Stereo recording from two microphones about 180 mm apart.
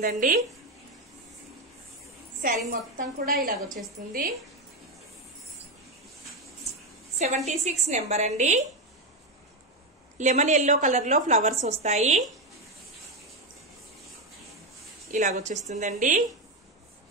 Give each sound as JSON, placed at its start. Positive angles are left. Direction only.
{"t": 0.0, "sound": "a woman's voice", "side_deg": -50}
{"t": 2.7, "sound": "a woman's voice", "side_deg": -55}
{"t": 7.2, "sound": "a woman's voice", "side_deg": -40}
{"t": 10.1, "sound": "a woman's voice", "side_deg": -40}
{"t": 15.0, "sound": "a woman's voice", "side_deg": -45}